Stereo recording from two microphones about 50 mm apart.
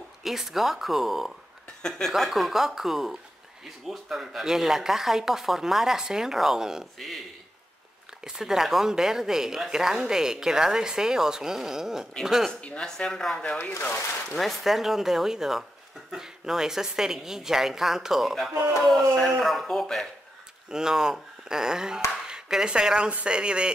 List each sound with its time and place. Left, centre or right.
0.2 s speech: centre
1.8 s speech: centre
2.1 s speech: centre
8.2 s speech: centre
12.6 s speech: centre
20.7 s speech: centre